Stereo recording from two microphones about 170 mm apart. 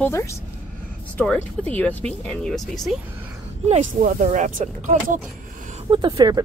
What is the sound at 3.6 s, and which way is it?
Speech, 45° right (ahead or behind).